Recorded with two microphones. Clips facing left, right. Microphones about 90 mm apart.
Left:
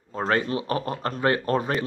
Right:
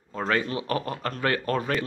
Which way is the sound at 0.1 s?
35° left (ahead or behind).